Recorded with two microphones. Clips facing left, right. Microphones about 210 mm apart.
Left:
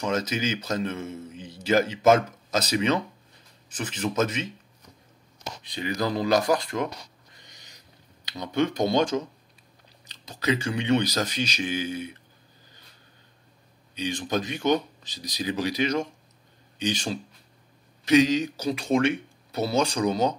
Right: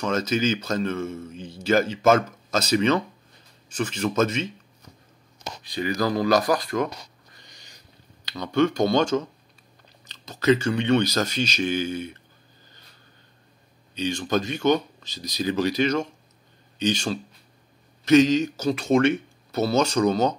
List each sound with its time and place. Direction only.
0.0 s speech: 15° left (ahead or behind)
5.6 s speech: 20° left (ahead or behind)
8.3 s speech: 15° left (ahead or behind)
13.9 s speech: 15° left (ahead or behind)
19.5 s speech: 15° left (ahead or behind)